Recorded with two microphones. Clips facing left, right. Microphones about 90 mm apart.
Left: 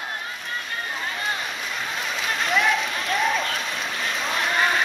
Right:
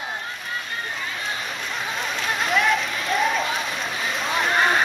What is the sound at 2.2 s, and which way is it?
Rain on surface, centre (ahead or behind).